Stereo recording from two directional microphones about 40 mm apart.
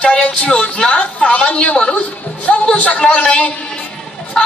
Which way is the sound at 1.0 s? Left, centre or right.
Left.